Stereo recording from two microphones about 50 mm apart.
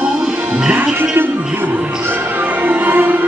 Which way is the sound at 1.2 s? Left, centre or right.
Right.